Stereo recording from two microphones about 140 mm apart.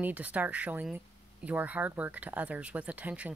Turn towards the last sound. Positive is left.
turn(degrees=-10)  # may be behind; listen again after turning